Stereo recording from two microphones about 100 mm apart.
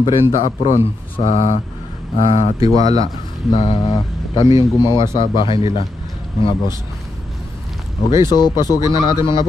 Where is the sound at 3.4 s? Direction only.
50° left (ahead or behind).